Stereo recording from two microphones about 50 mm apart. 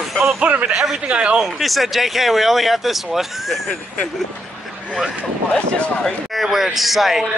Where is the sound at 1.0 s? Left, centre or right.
Right.